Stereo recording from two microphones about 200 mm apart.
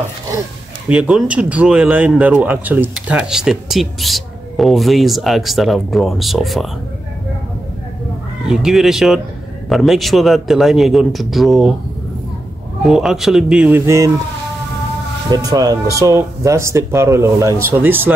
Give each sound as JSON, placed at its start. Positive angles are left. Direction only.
{"t": 0.8, "sound": "speech", "side_deg": -5}
{"t": 8.5, "sound": "speech", "side_deg": 0}
{"t": 12.8, "sound": "speech", "side_deg": 0}
{"t": 15.2, "sound": "speech", "side_deg": -20}